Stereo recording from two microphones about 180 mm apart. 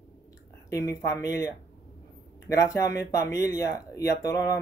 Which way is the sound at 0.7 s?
15° left (ahead or behind).